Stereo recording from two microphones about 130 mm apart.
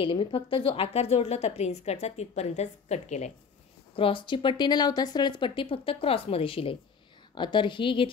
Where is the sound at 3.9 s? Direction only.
40° left (ahead or behind).